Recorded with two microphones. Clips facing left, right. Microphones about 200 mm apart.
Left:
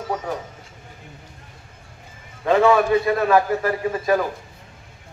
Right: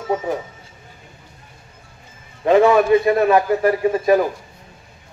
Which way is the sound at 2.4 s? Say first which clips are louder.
Right 3 dB; 20° right (ahead or behind).